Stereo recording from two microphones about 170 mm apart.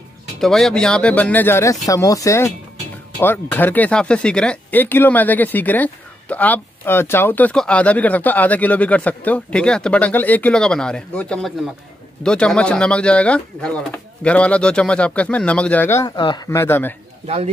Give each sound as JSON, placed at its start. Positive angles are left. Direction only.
{"t": 0.4, "sound": "speech", "side_deg": 0}
{"t": 16.2, "sound": "speech", "side_deg": 30}
{"t": 16.4, "sound": "speech", "side_deg": 15}